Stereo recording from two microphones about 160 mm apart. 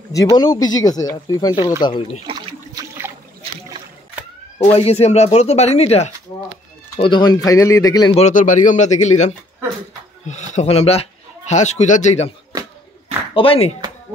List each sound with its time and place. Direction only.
0.1 s speech: 25° left (ahead or behind)
2.2 s splash: 30° right (ahead or behind)
4.6 s speech: 40° left (ahead or behind)
7.0 s speech: 30° left (ahead or behind)
8.2 s speech: 50° left (ahead or behind)
13.3 s speech: 35° left (ahead or behind)